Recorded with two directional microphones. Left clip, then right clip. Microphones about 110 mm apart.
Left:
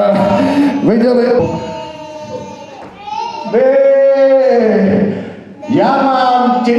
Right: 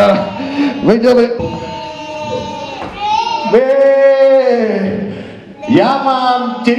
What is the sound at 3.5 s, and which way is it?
Speech, 30° left (ahead or behind).